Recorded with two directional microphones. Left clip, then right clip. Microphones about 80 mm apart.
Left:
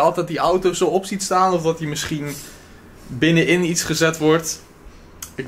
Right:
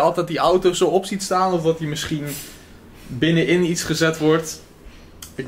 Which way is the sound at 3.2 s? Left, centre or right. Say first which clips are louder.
Left 1 dB; centre.